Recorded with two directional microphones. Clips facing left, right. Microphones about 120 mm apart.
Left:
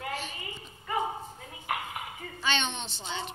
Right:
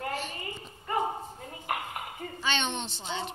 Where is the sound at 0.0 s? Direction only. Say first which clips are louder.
Right 2 dB; 45° right (ahead or behind).